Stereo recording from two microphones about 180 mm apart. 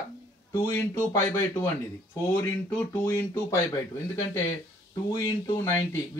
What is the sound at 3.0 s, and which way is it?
Speech, 15° left (ahead or behind).